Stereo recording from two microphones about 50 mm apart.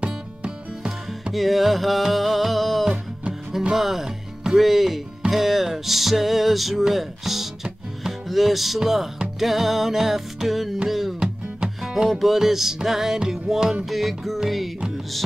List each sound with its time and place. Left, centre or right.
0.0 s music: centre
1.3 s music: centre
3.7 s speech: centre
5.3 s music: centre